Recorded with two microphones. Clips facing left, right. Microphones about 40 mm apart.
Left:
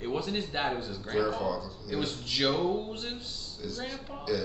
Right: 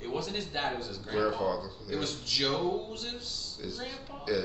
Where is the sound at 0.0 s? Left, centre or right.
Centre.